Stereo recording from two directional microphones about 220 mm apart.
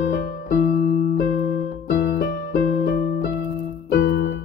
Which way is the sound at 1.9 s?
45° left (ahead or behind).